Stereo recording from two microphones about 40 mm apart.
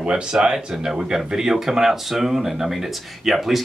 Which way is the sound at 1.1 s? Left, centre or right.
Centre.